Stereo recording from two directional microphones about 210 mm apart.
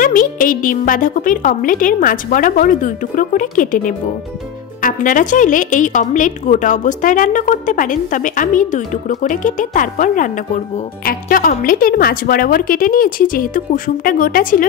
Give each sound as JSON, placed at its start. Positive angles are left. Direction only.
{"t": 0.0, "sound": "a woman's voice", "side_deg": 40}